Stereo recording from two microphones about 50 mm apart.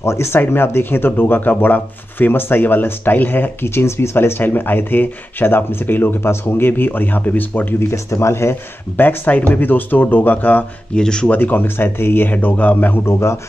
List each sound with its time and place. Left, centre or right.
0.0 s a man's voice: left
0.4 s speech: left
7.9 s speech: left
8.9 s speech: left
11.0 s speech: centre
11.2 s speech: left
12.3 s speech: left
13.0 s a man's voice: left